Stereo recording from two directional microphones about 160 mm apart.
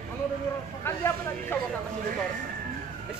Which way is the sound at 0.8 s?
15° left (ahead or behind).